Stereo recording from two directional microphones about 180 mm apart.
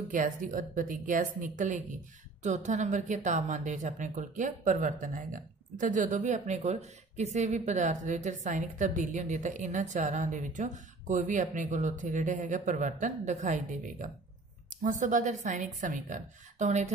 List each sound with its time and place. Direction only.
0.1 s a woman's voice: 45° right (ahead or behind)